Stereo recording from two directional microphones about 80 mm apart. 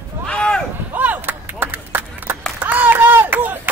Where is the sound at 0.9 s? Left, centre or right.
Right.